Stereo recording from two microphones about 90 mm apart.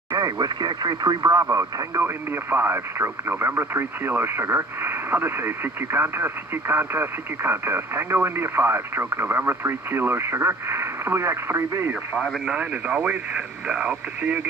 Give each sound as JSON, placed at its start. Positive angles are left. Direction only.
{"t": 0.1, "sound": "speech", "side_deg": -50}
{"t": 12.4, "sound": "speech", "side_deg": -15}